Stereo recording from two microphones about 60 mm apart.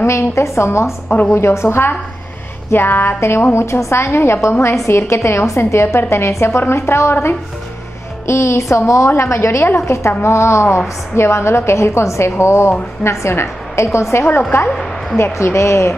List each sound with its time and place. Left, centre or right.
0.0 s a woman's voice: left
1.0 s a woman's voice: left
1.4 s a woman's voice: left
9.1 s a woman's voice: left
14.7 s a woman's voice: centre
15.1 s a woman's voice: left